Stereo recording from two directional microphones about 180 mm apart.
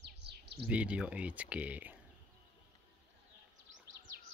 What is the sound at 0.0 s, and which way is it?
Bird, 65° right (ahead or behind).